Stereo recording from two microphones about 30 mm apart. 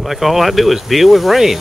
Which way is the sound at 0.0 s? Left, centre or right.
Centre.